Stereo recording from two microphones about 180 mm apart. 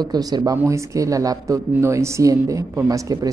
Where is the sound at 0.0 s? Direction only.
20° right (ahead or behind).